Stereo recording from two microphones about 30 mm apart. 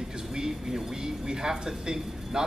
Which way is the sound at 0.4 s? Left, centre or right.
Right.